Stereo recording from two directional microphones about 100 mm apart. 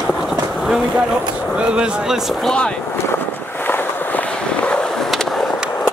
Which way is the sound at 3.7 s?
15° left (ahead or behind).